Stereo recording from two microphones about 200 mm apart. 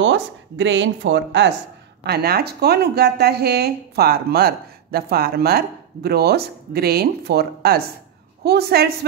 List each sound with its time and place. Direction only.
0.0 s speech: 65° right (ahead or behind)
2.0 s speech: 50° right (ahead or behind)